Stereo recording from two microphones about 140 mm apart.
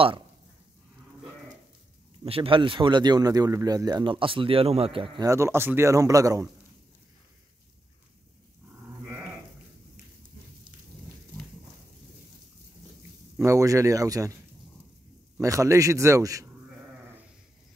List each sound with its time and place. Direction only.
2.2 s speech: 40° right (ahead or behind)
5.2 s speech: 20° right (ahead or behind)
13.4 s speech: 20° right (ahead or behind)
15.4 s speech: 25° right (ahead or behind)